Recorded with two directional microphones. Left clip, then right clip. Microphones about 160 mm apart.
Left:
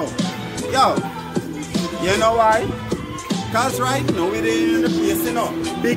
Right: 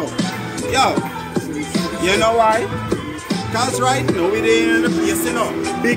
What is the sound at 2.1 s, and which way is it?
Speech, 35° left (ahead or behind).